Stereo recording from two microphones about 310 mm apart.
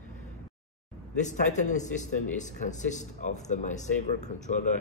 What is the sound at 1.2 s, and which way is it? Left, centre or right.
Speech, left.